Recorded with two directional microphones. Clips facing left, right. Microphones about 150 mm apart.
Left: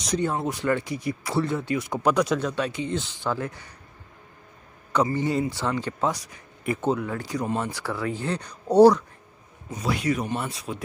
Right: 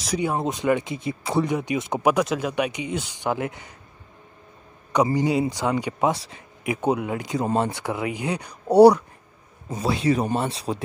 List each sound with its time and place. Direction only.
0.0 s speech: 10° right (ahead or behind)
2.0 s speech: 5° right (ahead or behind)
5.1 s speech: 15° right (ahead or behind)
6.1 s speech: 25° right (ahead or behind)
6.6 s speech: 15° right (ahead or behind)
9.7 s speech: 25° right (ahead or behind)